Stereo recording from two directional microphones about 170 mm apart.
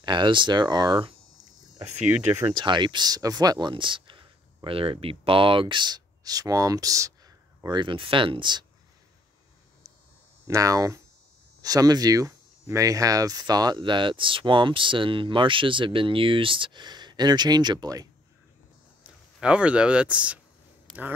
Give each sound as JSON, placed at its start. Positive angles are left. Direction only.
{"t": 0.0, "sound": "speech", "side_deg": -25}
{"t": 2.1, "sound": "speech", "side_deg": -10}
{"t": 2.5, "sound": "speech", "side_deg": -25}
{"t": 9.8, "sound": "cricket", "side_deg": -20}
{"t": 10.4, "sound": "speech", "side_deg": -20}
{"t": 19.0, "sound": "speech", "side_deg": -5}